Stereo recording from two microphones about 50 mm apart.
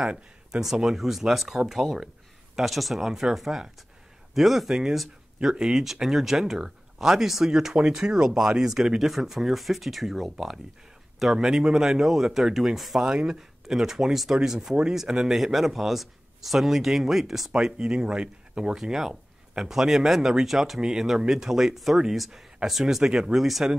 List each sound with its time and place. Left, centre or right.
0.5 s speech: centre
17.5 s speech: centre
23.4 s speech: centre